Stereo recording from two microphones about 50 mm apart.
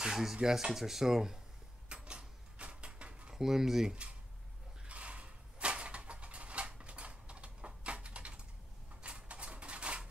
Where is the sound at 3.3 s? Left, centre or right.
Centre.